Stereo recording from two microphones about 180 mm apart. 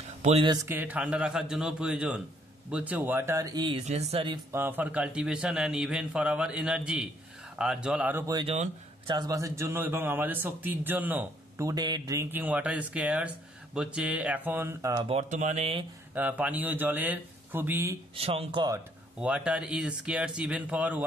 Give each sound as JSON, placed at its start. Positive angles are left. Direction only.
{"t": 0.2, "sound": "speech", "side_deg": -35}
{"t": 0.7, "sound": "a man's voice", "side_deg": -10}
{"t": 4.5, "sound": "a man's voice", "side_deg": -10}
{"t": 8.4, "sound": "a man's voice", "side_deg": -30}
{"t": 15.0, "sound": "speech", "side_deg": -40}
{"t": 16.2, "sound": "a man's voice", "side_deg": -10}
{"t": 18.1, "sound": "speech", "side_deg": -35}
{"t": 19.2, "sound": "a man's voice", "side_deg": -5}